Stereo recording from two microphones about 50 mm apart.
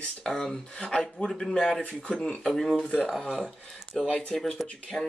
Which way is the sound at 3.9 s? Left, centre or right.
Centre.